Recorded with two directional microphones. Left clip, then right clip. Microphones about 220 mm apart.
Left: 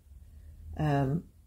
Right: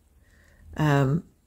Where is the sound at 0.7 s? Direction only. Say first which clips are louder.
Right 7 dB; 30° right (ahead or behind).